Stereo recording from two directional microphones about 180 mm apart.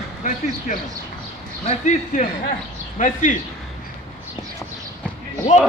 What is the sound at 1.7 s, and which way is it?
Speech, 40° left (ahead or behind).